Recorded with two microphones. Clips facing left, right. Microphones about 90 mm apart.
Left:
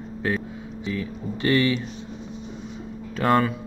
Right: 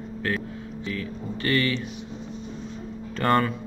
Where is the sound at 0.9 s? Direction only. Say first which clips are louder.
Left 3 dB; 20° left (ahead or behind).